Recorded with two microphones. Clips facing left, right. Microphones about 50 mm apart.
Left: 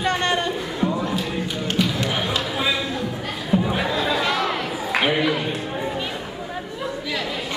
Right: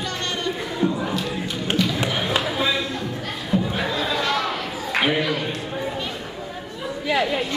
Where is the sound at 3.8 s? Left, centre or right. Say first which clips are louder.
Left 2 dB; centre.